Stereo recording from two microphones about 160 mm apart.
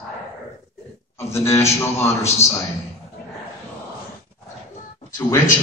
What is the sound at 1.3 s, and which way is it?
A man's voice, 15° left (ahead or behind).